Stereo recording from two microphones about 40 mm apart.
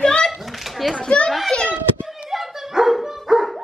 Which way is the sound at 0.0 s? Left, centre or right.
Left.